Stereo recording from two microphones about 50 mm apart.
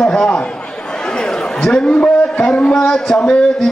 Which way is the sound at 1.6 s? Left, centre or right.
Centre.